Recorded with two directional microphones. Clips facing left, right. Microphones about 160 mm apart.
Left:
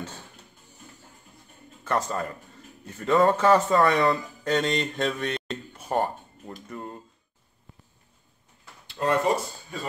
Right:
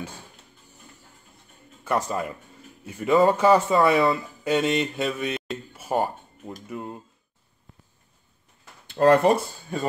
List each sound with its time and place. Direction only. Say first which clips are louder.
1.9 s speech: right 2 dB; 10° right (ahead or behind)
9.0 s speech: right 6 dB; 60° right (ahead or behind)